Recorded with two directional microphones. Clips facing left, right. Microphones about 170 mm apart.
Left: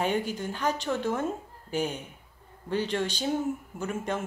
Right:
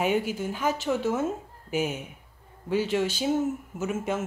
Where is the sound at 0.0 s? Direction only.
5° right (ahead or behind).